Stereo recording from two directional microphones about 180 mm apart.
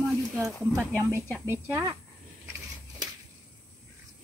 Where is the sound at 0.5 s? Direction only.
Centre (ahead or behind).